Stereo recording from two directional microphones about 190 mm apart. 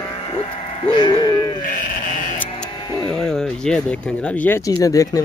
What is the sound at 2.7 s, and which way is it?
Sheep, 20° left (ahead or behind).